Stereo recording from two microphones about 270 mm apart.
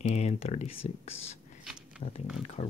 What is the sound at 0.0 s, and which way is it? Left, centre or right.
Speech, left.